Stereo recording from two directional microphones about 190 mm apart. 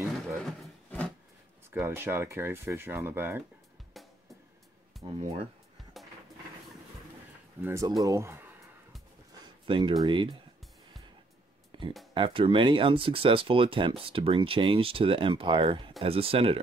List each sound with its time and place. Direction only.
0.4 s a sound: 5° left (ahead or behind)
1.7 s speech: 10° right (ahead or behind)
3.9 s music: centre (ahead or behind)
5.2 s speech: 30° right (ahead or behind)
6.0 s music: centre (ahead or behind)
7.6 s speech: 15° right (ahead or behind)
9.3 s a sound: 25° right (ahead or behind)
10.0 s speech: 25° right (ahead or behind)
11.7 s a sound: 25° right (ahead or behind)
12.1 s speech: 25° right (ahead or behind)